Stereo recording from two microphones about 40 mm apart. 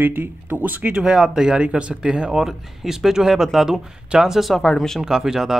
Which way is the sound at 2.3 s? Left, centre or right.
Centre.